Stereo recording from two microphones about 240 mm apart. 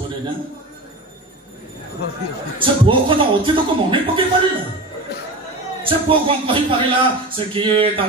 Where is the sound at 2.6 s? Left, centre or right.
Right.